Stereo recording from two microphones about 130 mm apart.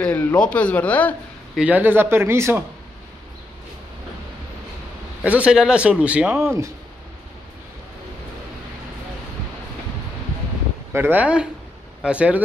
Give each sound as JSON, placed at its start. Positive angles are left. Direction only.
{"t": 0.0, "sound": "a man's voice", "side_deg": 10}
{"t": 1.6, "sound": "speech", "side_deg": -15}
{"t": 5.2, "sound": "speech", "side_deg": -10}
{"t": 6.4, "sound": "speech", "side_deg": -20}
{"t": 10.9, "sound": "speech", "side_deg": -15}